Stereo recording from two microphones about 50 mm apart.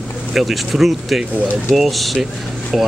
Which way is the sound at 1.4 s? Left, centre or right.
Right.